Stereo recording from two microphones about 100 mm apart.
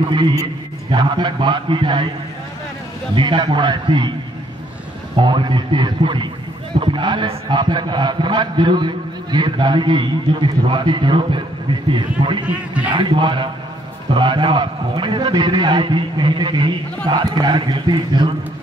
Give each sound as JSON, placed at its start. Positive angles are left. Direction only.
{"t": 0.9, "sound": "a man's voice", "side_deg": -50}
{"t": 3.2, "sound": "a man's voice", "side_deg": -50}
{"t": 5.1, "sound": "a man's voice", "side_deg": -50}
{"t": 12.4, "sound": "speech", "side_deg": -15}
{"t": 12.9, "sound": "a man's voice", "side_deg": -50}